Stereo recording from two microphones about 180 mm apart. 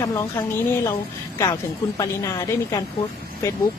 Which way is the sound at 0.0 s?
20° left (ahead or behind).